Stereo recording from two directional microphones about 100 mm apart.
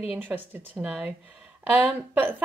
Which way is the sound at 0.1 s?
20° right (ahead or behind).